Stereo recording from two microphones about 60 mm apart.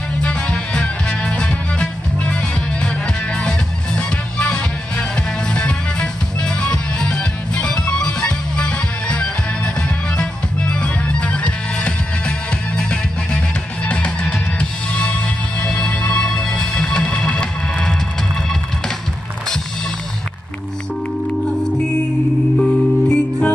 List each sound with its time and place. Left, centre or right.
0.2 s music: centre
3.3 s music: centre
22.6 s music: centre